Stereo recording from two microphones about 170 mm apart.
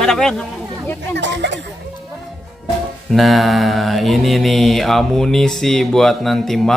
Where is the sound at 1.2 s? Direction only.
90° right.